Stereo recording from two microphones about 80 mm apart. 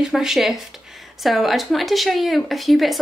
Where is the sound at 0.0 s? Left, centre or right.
Centre.